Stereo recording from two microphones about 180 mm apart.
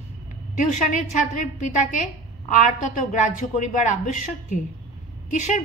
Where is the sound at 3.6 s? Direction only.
40° left (ahead or behind).